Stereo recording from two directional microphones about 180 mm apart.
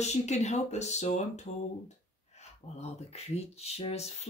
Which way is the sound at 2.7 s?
35° left (ahead or behind).